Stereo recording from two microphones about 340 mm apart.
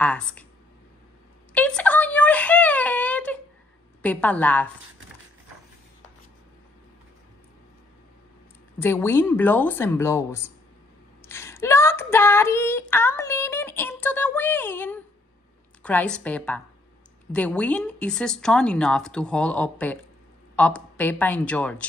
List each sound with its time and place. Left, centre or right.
0.0 s speech: centre
1.5 s a sound: centre
4.0 s speech: centre
8.7 s speech: centre
11.2 s female singing: centre
15.8 s speech: centre